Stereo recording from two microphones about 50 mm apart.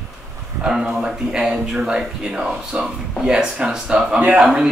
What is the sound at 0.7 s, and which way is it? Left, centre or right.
Speech, centre.